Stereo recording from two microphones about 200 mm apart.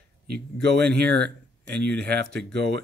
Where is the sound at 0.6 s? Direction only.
55° right (ahead or behind).